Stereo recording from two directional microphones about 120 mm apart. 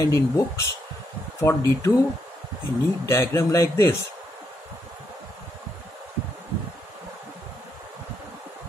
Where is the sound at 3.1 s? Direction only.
25° left (ahead or behind).